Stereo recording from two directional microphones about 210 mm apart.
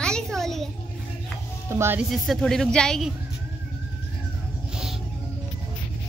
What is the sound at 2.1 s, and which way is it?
Speech, centre (ahead or behind).